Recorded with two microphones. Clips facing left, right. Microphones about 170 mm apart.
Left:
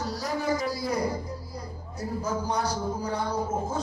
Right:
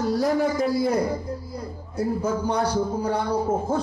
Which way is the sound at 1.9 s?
60° right (ahead or behind).